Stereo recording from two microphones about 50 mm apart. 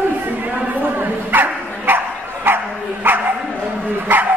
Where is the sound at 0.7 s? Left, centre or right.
Right.